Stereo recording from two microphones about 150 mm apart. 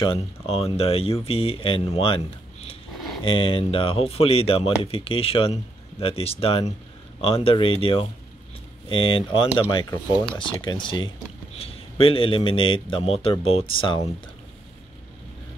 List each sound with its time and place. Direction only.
0.0 s speech: 40° left (ahead or behind)